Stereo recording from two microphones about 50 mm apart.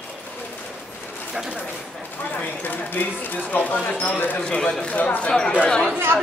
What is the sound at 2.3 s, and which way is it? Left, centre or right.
Speech, left.